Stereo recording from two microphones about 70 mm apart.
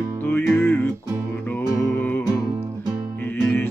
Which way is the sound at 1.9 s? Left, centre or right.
Left.